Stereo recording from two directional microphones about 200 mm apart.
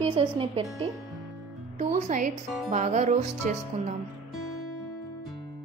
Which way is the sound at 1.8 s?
40° right (ahead or behind).